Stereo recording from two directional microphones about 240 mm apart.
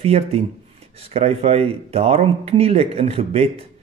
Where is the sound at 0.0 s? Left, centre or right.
Right.